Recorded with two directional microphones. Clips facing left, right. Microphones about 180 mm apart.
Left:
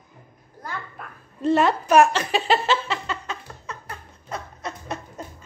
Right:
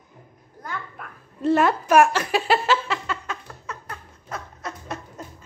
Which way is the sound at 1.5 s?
10° right (ahead or behind).